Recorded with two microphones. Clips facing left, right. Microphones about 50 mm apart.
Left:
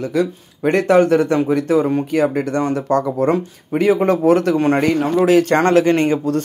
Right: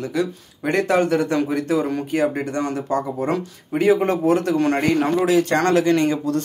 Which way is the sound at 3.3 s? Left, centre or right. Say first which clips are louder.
Left 4 dB; left.